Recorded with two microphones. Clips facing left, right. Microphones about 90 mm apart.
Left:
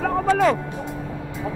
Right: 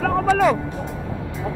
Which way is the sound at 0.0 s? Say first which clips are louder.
Right 1 dB; 5° left (ahead or behind).